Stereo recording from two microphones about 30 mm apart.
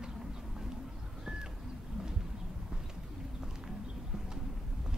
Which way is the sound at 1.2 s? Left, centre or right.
Right.